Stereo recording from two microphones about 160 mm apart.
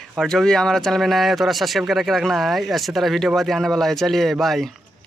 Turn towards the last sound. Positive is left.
turn(degrees=0)  # may be behind; listen again after turning